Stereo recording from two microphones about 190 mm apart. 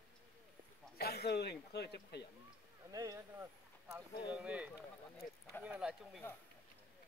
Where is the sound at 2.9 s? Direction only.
20° right (ahead or behind).